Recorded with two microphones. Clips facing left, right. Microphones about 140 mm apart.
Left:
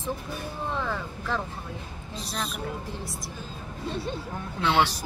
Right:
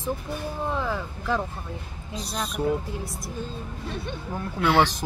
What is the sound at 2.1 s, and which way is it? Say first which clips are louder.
Speech: right 3 dB; 40° right (ahead or behind).